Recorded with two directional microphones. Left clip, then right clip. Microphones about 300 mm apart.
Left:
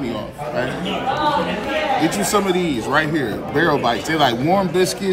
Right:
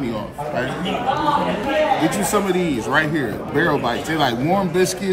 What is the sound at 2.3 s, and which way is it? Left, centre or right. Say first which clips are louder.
Speech: left 1 dB; centre.